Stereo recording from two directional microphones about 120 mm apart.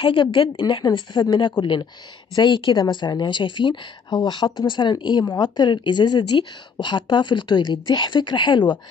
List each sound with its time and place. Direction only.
0.0 s a woman's voice: 40° left (ahead or behind)